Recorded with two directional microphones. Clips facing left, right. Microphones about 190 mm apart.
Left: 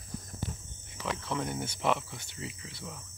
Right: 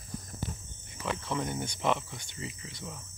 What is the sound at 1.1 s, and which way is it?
Speech, centre (ahead or behind).